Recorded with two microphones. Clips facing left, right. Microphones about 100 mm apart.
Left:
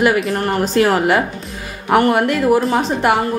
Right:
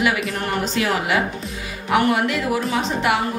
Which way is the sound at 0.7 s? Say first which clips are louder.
Left 8 dB; 45° left (ahead or behind).